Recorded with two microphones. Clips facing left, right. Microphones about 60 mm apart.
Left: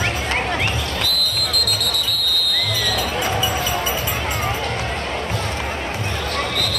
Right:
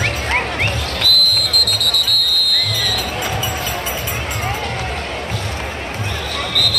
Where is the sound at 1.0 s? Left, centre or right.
Right.